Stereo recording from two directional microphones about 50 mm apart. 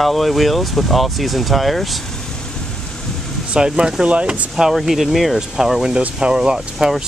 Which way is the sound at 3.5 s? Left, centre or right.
Centre.